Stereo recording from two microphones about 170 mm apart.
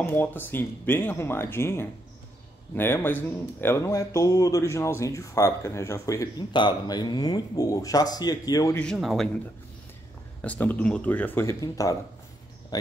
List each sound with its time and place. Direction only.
0.0 s speech: 10° left (ahead or behind)
8.8 s speech: centre (ahead or behind)
10.4 s speech: 10° left (ahead or behind)